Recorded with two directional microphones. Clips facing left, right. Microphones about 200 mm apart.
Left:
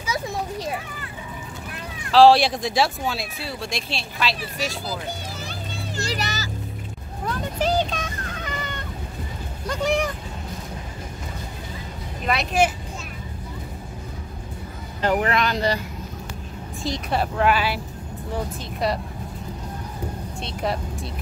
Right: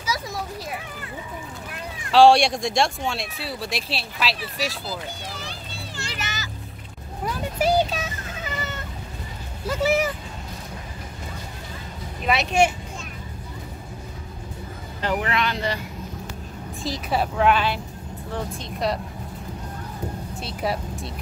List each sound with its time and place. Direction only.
2.0 s speech: centre (ahead or behind)
5.9 s music: 40° left (ahead or behind)
7.2 s a sound: 10° right (ahead or behind)
9.7 s speech: 5° right (ahead or behind)
12.3 s speech: centre (ahead or behind)
15.0 s speech: 40° left (ahead or behind)
16.8 s speech: centre (ahead or behind)
20.3 s speech: 5° right (ahead or behind)